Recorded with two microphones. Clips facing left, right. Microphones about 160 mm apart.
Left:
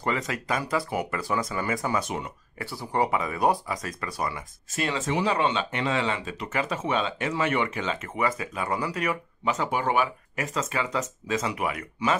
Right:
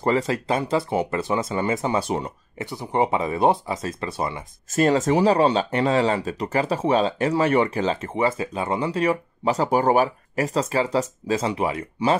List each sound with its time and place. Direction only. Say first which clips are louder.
0.0 s speech: right 7 dB; 35° right (ahead or behind)
2.6 s speech: right 4 dB; 20° right (ahead or behind)
4.6 s speech: right 10 dB; 45° right (ahead or behind)